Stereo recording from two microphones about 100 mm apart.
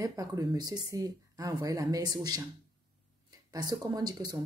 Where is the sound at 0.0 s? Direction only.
35° right (ahead or behind).